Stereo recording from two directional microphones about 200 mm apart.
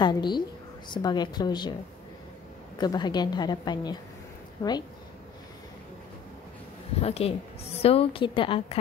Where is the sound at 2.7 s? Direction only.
20° left (ahead or behind).